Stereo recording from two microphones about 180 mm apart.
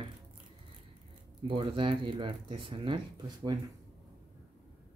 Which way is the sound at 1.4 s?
30° right (ahead or behind).